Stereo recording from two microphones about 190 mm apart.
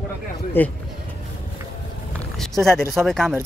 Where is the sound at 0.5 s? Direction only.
10° left (ahead or behind).